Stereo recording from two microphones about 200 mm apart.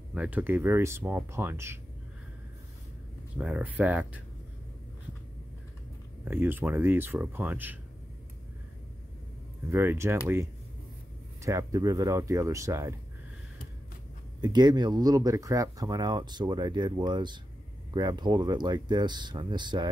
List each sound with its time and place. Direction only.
0.1 s speech: 5° right (ahead or behind)
3.3 s speech: 5° right (ahead or behind)
6.2 s speech: 10° right (ahead or behind)
9.7 s speech: 10° right (ahead or behind)
14.4 s speech: 20° right (ahead or behind)